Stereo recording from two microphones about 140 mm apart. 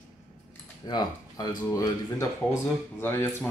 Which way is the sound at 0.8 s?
30° left (ahead or behind).